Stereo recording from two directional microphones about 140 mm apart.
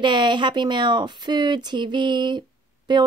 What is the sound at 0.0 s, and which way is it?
Speech, 35° right (ahead or behind).